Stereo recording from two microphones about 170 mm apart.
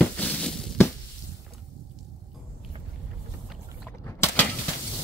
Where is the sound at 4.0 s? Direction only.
15° left (ahead or behind).